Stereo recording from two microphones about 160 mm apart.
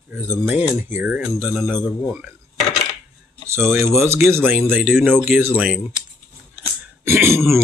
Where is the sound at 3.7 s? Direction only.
15° right (ahead or behind).